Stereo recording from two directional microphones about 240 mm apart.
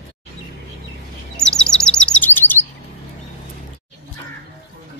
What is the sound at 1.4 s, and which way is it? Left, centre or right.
Chirp, centre.